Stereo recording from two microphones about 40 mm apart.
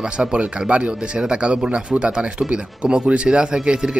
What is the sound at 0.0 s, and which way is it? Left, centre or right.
Speech, right.